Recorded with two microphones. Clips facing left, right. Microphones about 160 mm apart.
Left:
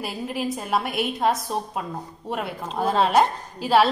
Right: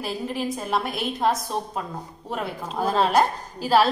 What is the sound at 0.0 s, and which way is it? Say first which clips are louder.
A woman's voice: even; 5° left (ahead or behind).